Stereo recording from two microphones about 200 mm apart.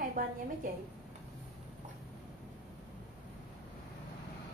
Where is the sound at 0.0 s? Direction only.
45° right (ahead or behind).